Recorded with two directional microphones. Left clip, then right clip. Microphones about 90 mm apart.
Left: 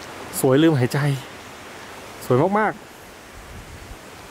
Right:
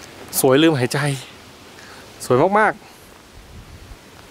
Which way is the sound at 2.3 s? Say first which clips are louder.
Right 4 dB; 5° right (ahead or behind).